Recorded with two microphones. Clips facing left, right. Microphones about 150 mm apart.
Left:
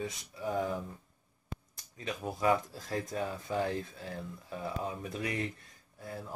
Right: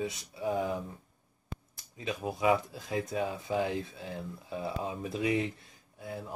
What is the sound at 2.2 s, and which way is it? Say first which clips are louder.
Speech: right 2 dB; 5° right (ahead or behind).